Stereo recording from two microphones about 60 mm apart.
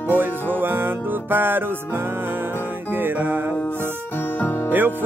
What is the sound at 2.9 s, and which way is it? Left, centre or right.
Music, right.